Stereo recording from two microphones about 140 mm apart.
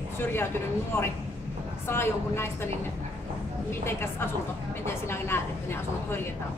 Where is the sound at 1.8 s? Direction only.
15° left (ahead or behind).